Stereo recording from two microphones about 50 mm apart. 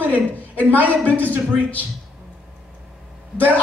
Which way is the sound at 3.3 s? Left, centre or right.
Left.